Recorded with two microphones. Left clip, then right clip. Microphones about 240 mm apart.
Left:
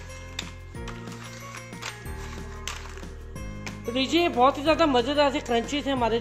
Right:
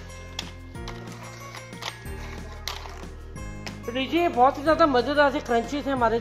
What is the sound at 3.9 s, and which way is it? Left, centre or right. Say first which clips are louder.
Speech: even; left.